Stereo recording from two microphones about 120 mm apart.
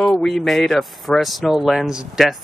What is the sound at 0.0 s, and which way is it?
Speech, 5° left (ahead or behind).